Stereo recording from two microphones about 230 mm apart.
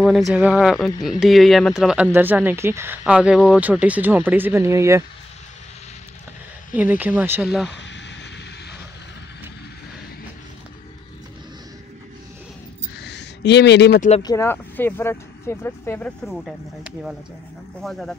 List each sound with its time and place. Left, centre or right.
0.0 s speech: centre
6.7 s speech: centre
7.7 s a sound: left
13.0 s a sound: left
14.2 s speech: centre
16.3 s speech: centre
17.8 s speech: centre